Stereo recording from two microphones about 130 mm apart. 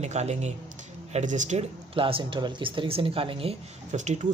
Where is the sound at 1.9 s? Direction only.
45° right (ahead or behind).